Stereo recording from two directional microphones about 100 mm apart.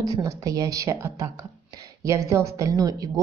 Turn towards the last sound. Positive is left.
turn(degrees=-40)  # may be behind; listen again after turning